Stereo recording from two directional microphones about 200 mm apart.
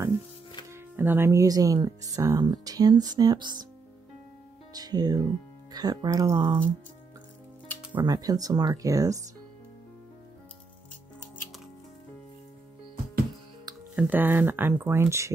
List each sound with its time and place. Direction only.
0.7 s speech: 10° right (ahead or behind)
4.7 s speech: 20° right (ahead or behind)
7.9 s speech: 20° right (ahead or behind)
13.9 s speech: 10° right (ahead or behind)